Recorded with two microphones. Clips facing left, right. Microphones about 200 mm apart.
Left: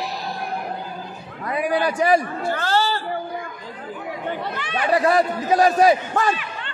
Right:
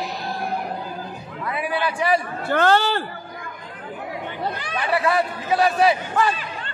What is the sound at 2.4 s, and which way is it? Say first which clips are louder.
Speech: right 3 dB; 60° right (ahead or behind).